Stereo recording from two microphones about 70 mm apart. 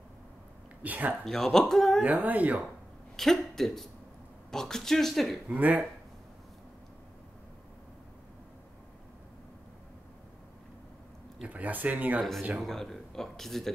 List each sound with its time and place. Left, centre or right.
0.8 s speech: right
1.2 s speech: centre
2.0 s speech: right
3.2 s speech: centre
5.5 s speech: right
11.4 s speech: right
12.6 s speech: centre